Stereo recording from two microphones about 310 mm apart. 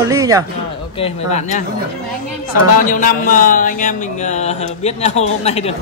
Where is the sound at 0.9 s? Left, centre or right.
Centre.